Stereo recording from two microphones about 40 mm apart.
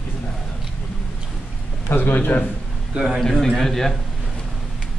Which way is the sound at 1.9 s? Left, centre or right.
Left.